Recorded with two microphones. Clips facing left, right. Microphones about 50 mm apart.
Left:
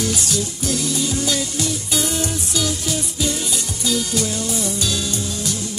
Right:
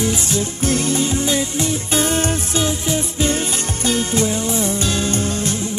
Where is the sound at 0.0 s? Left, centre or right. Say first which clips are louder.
Right 3 dB; right.